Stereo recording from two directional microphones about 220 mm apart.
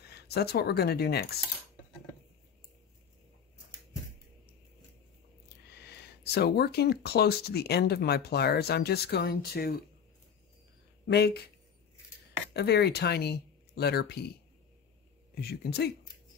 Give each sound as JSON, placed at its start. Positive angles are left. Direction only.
{"t": 0.1, "sound": "speech", "side_deg": 45}
{"t": 5.7, "sound": "speech", "side_deg": 50}
{"t": 11.1, "sound": "speech", "side_deg": 50}
{"t": 12.5, "sound": "speech", "side_deg": 45}
{"t": 15.3, "sound": "speech", "side_deg": 45}